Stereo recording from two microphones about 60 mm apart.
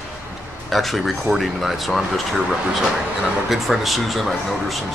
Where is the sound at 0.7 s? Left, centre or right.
Centre.